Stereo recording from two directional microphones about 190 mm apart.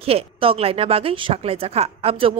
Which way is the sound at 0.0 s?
30° right (ahead or behind).